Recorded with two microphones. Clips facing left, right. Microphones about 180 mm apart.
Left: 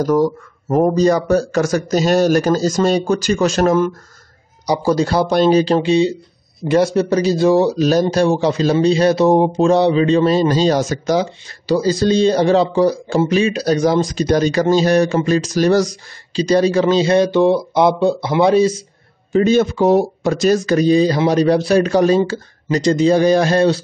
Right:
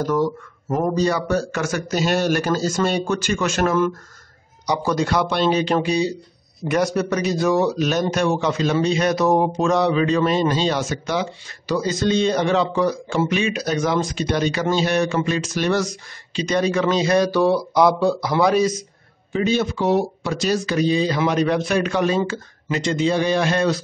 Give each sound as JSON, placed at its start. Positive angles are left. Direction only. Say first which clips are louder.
{"t": 0.0, "sound": "a man's voice", "louder": "left 5 dB", "side_deg": 40}
{"t": 19.3, "sound": "a man's voice", "louder": "left 7 dB", "side_deg": 45}